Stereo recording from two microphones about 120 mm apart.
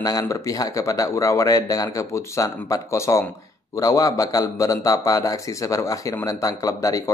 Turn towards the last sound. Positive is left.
turn(degrees=25)  # may be behind; listen again after turning